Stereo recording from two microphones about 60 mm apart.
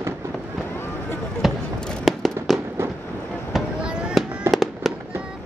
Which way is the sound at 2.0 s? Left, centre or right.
Centre.